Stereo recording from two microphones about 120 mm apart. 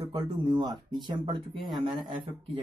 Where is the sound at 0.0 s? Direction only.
35° right (ahead or behind).